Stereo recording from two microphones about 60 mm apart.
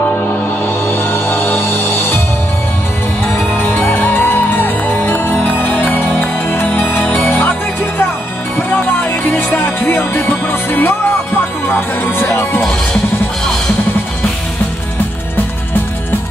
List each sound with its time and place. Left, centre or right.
0.8 s music: left
3.3 s music: left
8.7 s music: left
12.0 s music: left